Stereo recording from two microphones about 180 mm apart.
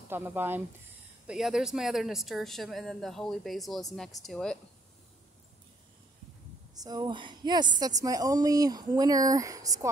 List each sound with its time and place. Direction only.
0.1 s speech: 10° right (ahead or behind)
6.7 s a woman's voice: 20° right (ahead or behind)